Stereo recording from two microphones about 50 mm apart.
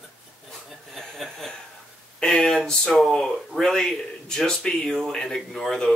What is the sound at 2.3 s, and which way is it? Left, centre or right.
Speech, centre.